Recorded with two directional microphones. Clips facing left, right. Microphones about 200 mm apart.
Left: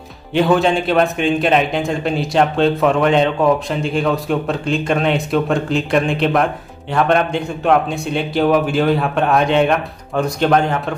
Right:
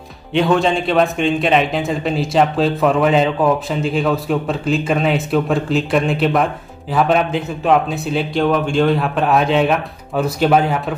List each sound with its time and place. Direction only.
0.3 s speech: centre (ahead or behind)